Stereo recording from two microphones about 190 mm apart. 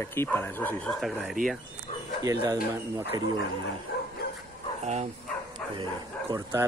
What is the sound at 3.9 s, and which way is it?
Bow-wow, 60° left (ahead or behind).